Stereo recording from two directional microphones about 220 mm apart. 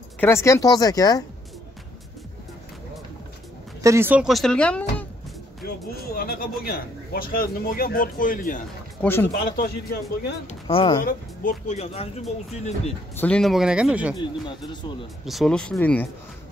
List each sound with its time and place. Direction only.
0.2 s speech: 10° left (ahead or behind)
3.8 s speech: 10° right (ahead or behind); by 5.0 s 5° left (ahead or behind)
5.6 s speech: 45° left (ahead or behind)
9.0 s speech: 10° left (ahead or behind)
9.3 s speech: 40° left (ahead or behind)
10.7 s speech: 25° left (ahead or behind)
11.0 s speech: 40° left (ahead or behind)
13.1 s speech: 5° left (ahead or behind)
14.7 s speech: 20° left (ahead or behind)
15.2 s speech: centre (ahead or behind)